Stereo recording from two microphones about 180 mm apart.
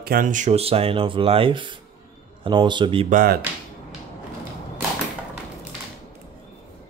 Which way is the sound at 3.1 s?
50° right (ahead or behind).